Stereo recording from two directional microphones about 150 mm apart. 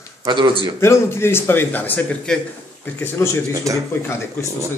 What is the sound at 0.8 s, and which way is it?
A man's voice, 15° left (ahead or behind).